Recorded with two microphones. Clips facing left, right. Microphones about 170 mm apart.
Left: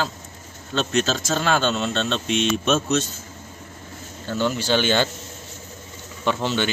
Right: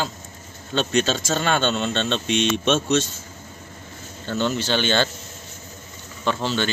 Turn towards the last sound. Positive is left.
turn(degrees=15)  # may be behind; listen again after turning